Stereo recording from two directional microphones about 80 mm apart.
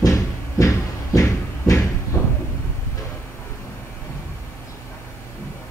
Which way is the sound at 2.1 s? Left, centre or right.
Left.